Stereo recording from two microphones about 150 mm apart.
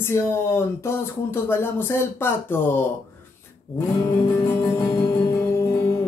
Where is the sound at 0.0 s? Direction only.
15° left (ahead or behind).